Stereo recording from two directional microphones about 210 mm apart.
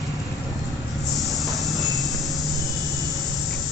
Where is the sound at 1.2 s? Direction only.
Centre (ahead or behind).